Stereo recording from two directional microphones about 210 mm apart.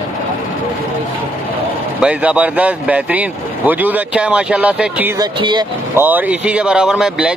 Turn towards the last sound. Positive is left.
turn(degrees=-5)  # may be behind; listen again after turning